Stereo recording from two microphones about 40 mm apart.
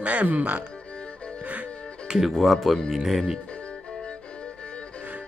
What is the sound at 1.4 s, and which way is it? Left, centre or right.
Music, right.